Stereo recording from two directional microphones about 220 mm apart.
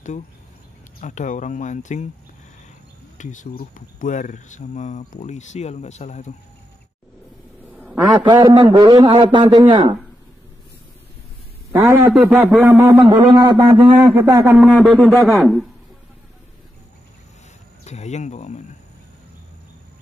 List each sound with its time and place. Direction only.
1.0 s speech: 35° left (ahead or behind)
3.2 s speech: 35° left (ahead or behind)
7.7 s a sound: 10° right (ahead or behind)
8.2 s a man's voice: 20° right (ahead or behind)
12.1 s a sound: centre (ahead or behind)
14.6 s speech: centre (ahead or behind)
17.8 s speech: 30° left (ahead or behind)